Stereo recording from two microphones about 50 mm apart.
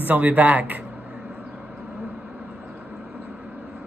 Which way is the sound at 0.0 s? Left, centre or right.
Right.